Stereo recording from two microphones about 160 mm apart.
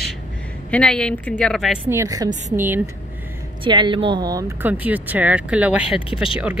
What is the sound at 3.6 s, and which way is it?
Speech, 30° right (ahead or behind).